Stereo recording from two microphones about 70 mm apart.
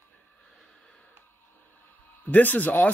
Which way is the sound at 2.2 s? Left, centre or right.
Left.